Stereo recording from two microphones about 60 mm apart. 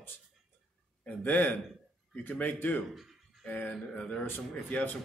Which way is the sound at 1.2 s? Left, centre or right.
Left.